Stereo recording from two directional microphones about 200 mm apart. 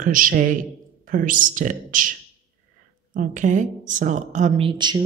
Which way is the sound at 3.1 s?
40° right (ahead or behind).